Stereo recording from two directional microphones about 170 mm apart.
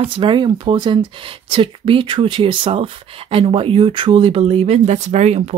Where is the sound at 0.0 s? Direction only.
30° right (ahead or behind).